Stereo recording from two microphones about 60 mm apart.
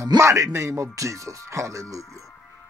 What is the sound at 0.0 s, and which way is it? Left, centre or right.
Speech, right.